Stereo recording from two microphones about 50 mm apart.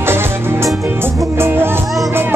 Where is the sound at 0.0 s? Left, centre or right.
Right.